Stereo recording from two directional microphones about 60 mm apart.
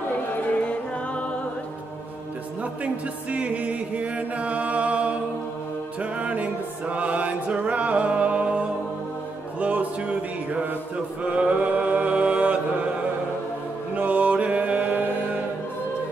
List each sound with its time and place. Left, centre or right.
2.6 s music: right
9.6 s a sound: right
11.2 s mantra: right
13.9 s mantra: right